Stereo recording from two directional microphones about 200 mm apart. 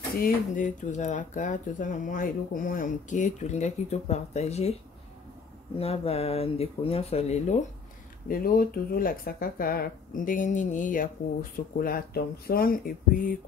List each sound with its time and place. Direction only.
0.2 s speech: 40° left (ahead or behind)
5.8 s speech: 30° left (ahead or behind)
8.3 s speech: 45° left (ahead or behind)